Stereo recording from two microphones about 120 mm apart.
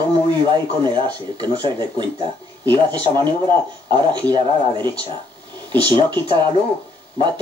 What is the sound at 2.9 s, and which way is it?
Speech, 40° right (ahead or behind).